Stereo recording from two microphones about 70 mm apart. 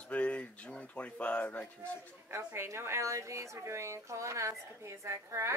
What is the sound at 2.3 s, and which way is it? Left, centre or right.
A woman's voice, right.